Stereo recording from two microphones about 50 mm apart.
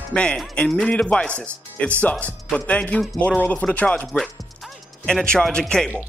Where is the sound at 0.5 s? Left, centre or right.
Centre.